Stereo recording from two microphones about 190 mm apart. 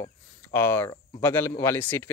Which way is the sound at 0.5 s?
10° left (ahead or behind).